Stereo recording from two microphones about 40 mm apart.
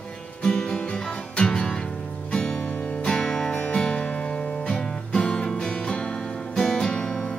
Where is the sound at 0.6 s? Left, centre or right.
Left.